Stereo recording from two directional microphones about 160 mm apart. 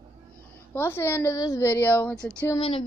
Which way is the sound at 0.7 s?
15° left (ahead or behind).